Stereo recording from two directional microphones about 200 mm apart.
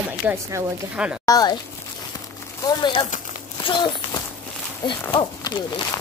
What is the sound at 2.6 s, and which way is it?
A child's voice, 20° left (ahead or behind).